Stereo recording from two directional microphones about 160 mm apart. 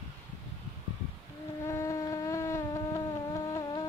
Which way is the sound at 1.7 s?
20° left (ahead or behind).